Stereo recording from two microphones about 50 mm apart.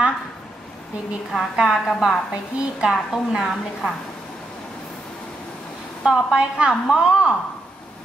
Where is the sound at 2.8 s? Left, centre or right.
Centre.